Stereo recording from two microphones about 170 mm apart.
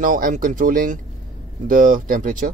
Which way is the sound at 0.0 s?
50° right (ahead or behind).